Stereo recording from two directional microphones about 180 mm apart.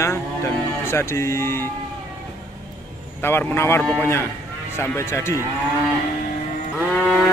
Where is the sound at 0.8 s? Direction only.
15° left (ahead or behind).